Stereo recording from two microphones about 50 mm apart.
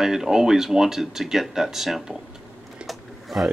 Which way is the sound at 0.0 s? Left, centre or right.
Centre.